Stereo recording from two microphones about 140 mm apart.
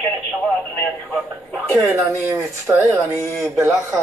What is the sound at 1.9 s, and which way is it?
Speech, 15° right (ahead or behind).